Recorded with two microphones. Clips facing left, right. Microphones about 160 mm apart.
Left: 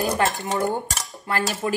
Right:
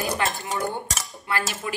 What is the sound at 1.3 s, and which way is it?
Speech, 45° left (ahead or behind).